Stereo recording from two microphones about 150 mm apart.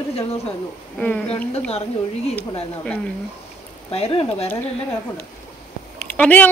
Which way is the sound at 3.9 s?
40° left (ahead or behind).